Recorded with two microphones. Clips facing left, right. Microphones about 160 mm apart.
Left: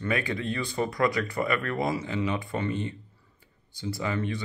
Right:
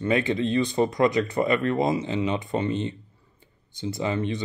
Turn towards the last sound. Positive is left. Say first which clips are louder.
# right 3 dB
turn(degrees=-20)  # may be behind; listen again after turning